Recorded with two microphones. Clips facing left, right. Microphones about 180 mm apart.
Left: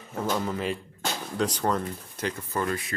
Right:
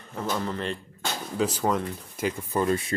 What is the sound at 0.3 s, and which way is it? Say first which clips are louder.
Speech: left 1 dB; 5° left (ahead or behind).